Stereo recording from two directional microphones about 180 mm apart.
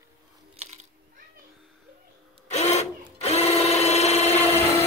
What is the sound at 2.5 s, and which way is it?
Sewing machine, 40° left (ahead or behind).